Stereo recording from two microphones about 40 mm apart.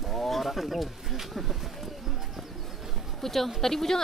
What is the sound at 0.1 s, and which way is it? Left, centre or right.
Speech, centre.